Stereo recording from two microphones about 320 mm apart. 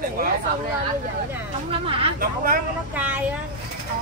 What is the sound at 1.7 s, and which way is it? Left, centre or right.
Speech, centre.